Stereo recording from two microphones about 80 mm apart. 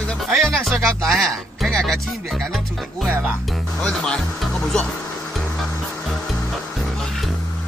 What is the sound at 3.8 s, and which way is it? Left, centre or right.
Music, centre.